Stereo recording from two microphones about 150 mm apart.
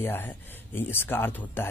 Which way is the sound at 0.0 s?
15° left (ahead or behind).